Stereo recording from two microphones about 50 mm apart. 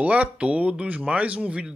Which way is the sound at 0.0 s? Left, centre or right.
Right.